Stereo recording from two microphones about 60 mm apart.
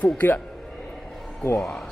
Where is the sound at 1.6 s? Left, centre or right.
Centre.